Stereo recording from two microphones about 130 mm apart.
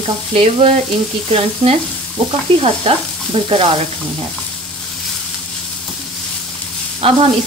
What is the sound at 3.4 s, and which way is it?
Stir, 45° right (ahead or behind).